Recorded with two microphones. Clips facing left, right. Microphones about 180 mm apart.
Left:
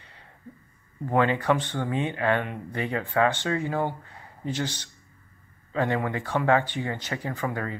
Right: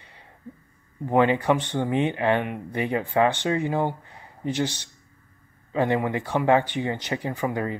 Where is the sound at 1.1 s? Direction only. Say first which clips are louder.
Right 3 dB; 15° right (ahead or behind).